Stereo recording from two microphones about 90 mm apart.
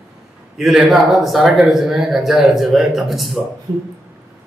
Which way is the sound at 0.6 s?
5° right (ahead or behind).